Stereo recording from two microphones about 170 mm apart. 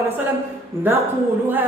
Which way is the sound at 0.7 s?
15° right (ahead or behind).